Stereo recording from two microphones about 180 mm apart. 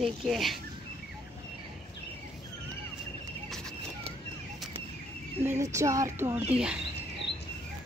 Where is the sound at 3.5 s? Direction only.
5° left (ahead or behind).